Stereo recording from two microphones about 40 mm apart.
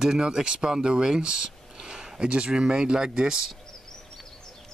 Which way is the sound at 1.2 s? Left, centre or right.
Centre.